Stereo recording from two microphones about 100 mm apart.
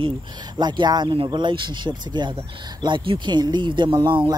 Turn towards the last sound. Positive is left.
turn(degrees=-50)  # may be behind; listen again after turning